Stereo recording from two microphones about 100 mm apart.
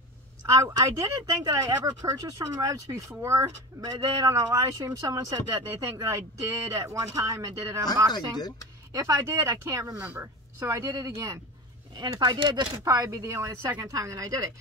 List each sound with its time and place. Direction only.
0.4 s speech: 35° right (ahead or behind)
8.1 s speech: 40° left (ahead or behind)
8.9 s speech: 30° right (ahead or behind)
9.9 s speech: 20° right (ahead or behind); by 11.4 s 35° right (ahead or behind)
12.0 s speech: 45° right (ahead or behind)